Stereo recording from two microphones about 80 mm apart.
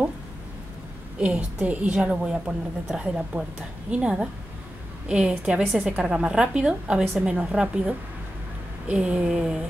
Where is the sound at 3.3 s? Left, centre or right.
Right.